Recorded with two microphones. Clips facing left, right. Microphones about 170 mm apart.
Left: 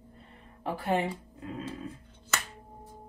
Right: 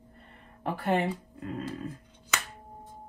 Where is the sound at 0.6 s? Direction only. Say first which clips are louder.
Right 1 dB; 60° right (ahead or behind).